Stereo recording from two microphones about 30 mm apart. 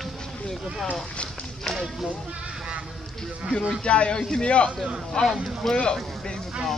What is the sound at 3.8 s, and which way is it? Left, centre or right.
Speech, left.